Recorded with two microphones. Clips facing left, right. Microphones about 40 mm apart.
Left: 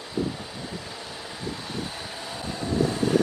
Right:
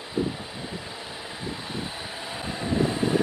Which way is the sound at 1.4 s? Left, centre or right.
Centre.